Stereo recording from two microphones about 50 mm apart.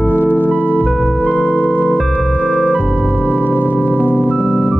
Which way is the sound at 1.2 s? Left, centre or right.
Left.